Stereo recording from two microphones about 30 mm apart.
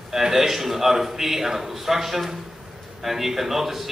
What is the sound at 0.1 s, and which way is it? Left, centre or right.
A man's voice, centre.